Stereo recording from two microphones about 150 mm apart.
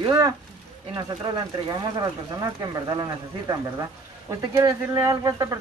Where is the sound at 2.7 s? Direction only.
25° right (ahead or behind).